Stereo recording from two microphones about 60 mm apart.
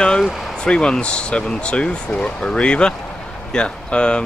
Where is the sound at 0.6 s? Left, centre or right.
Centre.